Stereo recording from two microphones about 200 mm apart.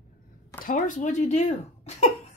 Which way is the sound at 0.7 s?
40° left (ahead or behind).